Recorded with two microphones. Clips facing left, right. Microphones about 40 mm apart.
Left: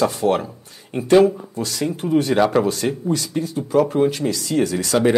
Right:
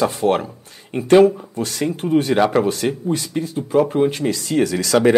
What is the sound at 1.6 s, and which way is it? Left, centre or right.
Speech, right.